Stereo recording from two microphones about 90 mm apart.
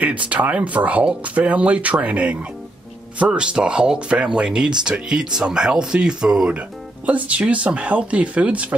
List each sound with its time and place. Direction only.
0.0 s speech: 15° right (ahead or behind)